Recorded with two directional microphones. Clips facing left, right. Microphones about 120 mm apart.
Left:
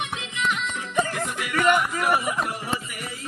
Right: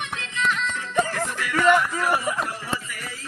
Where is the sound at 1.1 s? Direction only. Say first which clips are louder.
Right 1 dB; 15° left (ahead or behind).